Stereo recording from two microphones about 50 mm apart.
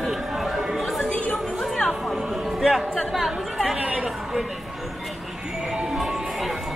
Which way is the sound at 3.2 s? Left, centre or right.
Centre.